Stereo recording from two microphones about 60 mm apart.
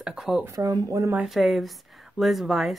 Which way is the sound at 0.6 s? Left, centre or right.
Right.